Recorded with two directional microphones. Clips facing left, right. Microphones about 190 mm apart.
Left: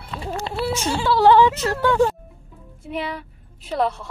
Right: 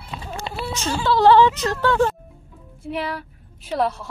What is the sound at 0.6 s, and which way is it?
Speech, 10° left (ahead or behind).